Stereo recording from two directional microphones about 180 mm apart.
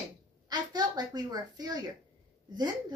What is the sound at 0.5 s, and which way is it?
A woman's voice, 20° right (ahead or behind).